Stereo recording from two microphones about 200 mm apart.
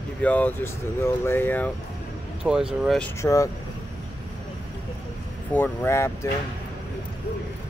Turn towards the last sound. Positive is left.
turn(degrees=15)  # may be behind; listen again after turning